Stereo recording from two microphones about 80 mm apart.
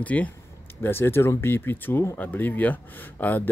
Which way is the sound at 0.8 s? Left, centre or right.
Left.